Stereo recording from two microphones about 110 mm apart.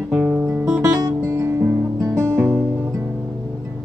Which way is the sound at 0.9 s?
30° right (ahead or behind).